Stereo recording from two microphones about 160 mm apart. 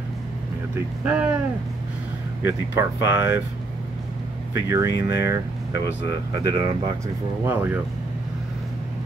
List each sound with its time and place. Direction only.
0.7 s speech: 10° right (ahead or behind)
2.4 s speech: 15° right (ahead or behind)
4.6 s speech: 20° right (ahead or behind)
7.4 s speech: 15° right (ahead or behind)